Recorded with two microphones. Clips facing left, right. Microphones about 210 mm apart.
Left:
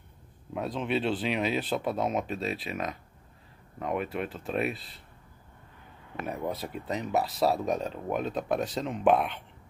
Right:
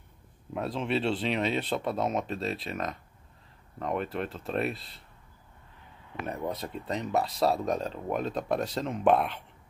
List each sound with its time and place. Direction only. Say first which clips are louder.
0.5 s speech: even; centre (ahead or behind)
6.1 s speech: even; 5° left (ahead or behind)